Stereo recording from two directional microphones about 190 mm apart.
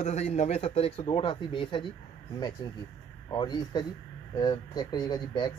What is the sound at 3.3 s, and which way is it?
Speech, 25° left (ahead or behind).